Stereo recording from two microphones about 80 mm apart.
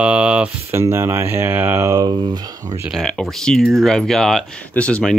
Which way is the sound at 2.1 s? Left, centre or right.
Right.